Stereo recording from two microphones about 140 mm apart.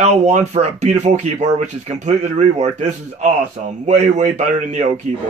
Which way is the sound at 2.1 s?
55° right (ahead or behind).